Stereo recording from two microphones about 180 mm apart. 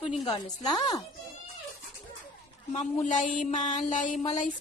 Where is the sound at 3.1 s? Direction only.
45° left (ahead or behind).